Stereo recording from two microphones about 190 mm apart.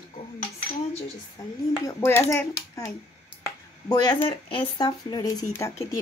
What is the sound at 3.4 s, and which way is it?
Finger snapping, 20° left (ahead or behind).